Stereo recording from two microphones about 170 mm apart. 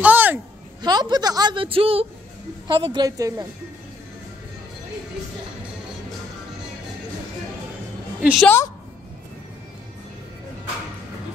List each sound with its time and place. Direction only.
0.0 s a sound: 10° right (ahead or behind)
0.8 s a woman's voice: 25° right (ahead or behind)
8.2 s a woman's voice: 5° right (ahead or behind)